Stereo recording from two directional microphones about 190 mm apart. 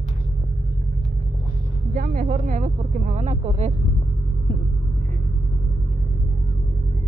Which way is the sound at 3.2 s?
35° right (ahead or behind).